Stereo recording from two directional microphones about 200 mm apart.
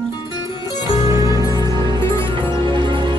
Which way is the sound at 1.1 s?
15° right (ahead or behind).